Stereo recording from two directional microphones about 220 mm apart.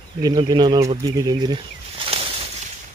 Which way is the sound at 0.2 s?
20° right (ahead or behind).